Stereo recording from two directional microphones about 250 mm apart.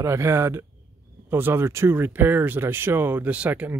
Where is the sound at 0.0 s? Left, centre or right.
Centre.